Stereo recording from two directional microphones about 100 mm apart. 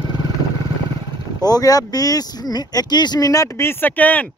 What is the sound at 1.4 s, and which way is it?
Speech, 40° left (ahead or behind).